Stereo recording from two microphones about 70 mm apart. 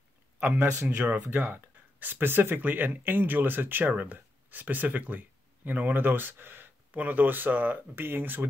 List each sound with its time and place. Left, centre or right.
0.4 s speech: right